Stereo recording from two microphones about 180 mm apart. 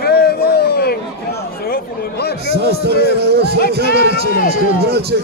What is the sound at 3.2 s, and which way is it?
A man's voice, 65° right (ahead or behind).